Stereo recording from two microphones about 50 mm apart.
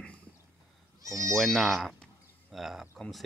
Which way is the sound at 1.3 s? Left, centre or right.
Centre.